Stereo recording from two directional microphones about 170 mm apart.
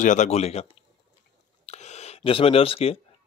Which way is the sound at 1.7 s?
40° left (ahead or behind).